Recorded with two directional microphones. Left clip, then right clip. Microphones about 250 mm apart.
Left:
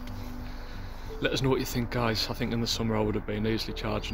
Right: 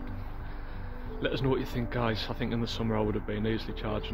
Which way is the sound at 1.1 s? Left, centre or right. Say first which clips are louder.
Left 2 dB; centre.